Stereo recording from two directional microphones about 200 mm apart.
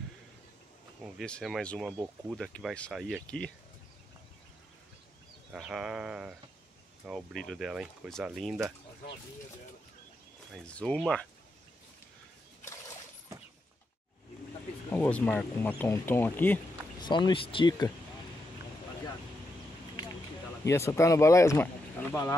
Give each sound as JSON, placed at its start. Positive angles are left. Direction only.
{"t": 1.0, "sound": "speech", "side_deg": 0}
{"t": 1.9, "sound": "speech", "side_deg": -10}
{"t": 2.3, "sound": "speech", "side_deg": 0}
{"t": 5.5, "sound": "speech", "side_deg": -5}
{"t": 10.5, "sound": "speech", "side_deg": 5}
{"t": 14.9, "sound": "speech", "side_deg": 5}
{"t": 17.0, "sound": "speech", "side_deg": 20}
{"t": 20.6, "sound": "speech", "side_deg": 15}